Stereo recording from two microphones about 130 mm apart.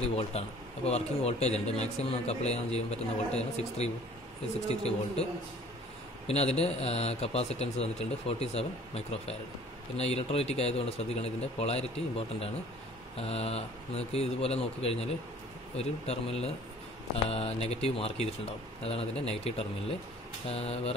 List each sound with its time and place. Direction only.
0.1 s a man's voice: 55° left (ahead or behind)
6.2 s a man's voice: 55° left (ahead or behind)